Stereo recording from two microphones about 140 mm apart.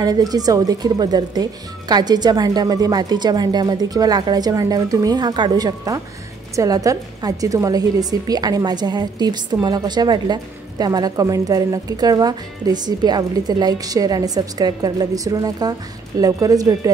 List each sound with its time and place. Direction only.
0.0 s a woman's voice: 25° right (ahead or behind)